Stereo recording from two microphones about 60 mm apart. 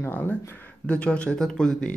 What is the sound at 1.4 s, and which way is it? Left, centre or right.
Speech, centre.